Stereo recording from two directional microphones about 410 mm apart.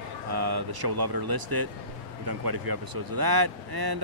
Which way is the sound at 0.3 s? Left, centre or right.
Right.